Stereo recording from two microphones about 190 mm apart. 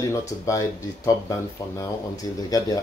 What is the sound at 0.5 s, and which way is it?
Speech, 15° left (ahead or behind).